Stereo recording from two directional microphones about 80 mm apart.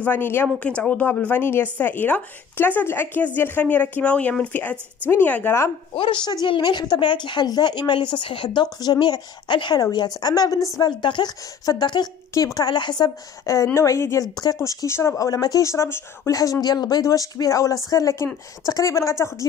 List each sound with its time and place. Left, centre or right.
0.0 s speech: left
0.6 s speech: centre
5.9 s a woman's voice: left
8.6 s a woman's voice: left
9.8 s a woman's voice: left
10.8 s a woman's voice: left
11.6 s speech: left
12.5 s a woman's voice: left
13.7 s speech: left
14.3 s speech: left
16.6 s speech: left